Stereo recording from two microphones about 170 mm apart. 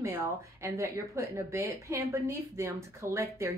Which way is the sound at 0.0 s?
15° right (ahead or behind).